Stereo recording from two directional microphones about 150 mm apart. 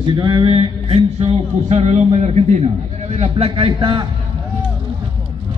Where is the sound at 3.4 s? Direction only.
35° right (ahead or behind).